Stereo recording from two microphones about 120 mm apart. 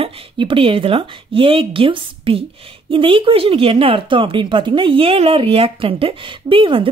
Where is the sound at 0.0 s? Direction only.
50° right (ahead or behind).